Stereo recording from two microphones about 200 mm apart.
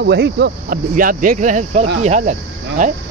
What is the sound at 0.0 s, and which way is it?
Speech, 55° right (ahead or behind).